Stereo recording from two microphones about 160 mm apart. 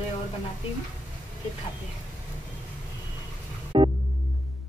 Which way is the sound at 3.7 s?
30° right (ahead or behind).